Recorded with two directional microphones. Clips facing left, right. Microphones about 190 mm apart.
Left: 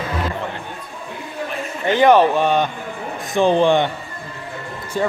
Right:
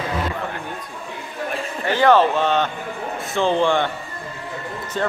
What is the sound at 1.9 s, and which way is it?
A man's voice, 20° left (ahead or behind).